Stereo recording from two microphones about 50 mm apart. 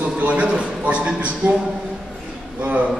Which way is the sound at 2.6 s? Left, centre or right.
Right.